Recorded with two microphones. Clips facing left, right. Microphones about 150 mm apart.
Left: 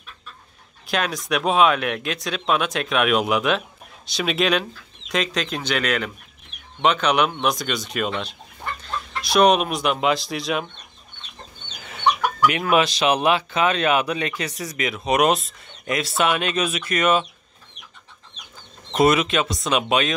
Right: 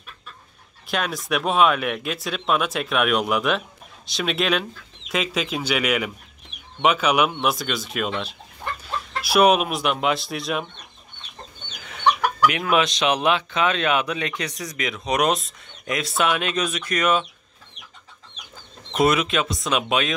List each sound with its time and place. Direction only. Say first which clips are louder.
0.8 s speech: left 1 dB; centre (ahead or behind)
11.8 s chicken: even; centre (ahead or behind)
12.4 s speech: left 1 dB; centre (ahead or behind)
18.9 s speech: left 2 dB; centre (ahead or behind)